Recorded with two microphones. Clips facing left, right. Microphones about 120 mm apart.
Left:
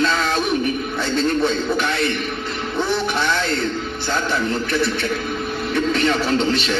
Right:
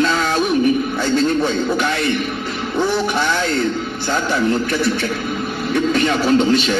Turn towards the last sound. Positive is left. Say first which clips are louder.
# right 5 dB
turn(degrees=-5)  # may be behind; listen again after turning